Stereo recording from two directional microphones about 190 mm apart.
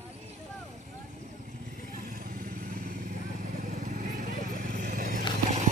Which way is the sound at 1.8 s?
45° right (ahead or behind).